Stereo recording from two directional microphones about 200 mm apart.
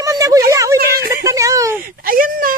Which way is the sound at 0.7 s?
50° right (ahead or behind).